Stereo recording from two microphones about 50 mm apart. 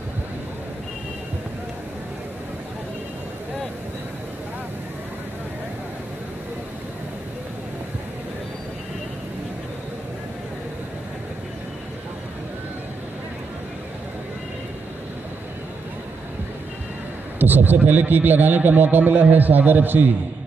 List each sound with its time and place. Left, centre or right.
17.4 s speech: right